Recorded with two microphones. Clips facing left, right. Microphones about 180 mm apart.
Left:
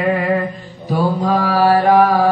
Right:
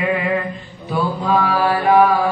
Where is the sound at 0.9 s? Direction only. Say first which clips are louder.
Left 2 dB; 40° left (ahead or behind).